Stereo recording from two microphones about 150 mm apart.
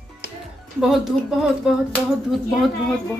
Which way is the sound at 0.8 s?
Centre (ahead or behind).